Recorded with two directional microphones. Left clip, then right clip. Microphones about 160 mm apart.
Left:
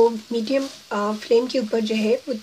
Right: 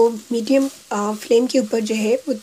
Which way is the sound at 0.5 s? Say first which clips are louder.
Right 7 dB; 35° right (ahead or behind).